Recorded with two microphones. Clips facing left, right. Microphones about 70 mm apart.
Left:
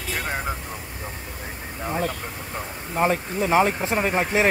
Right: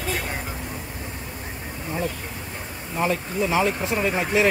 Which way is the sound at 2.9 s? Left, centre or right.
Left.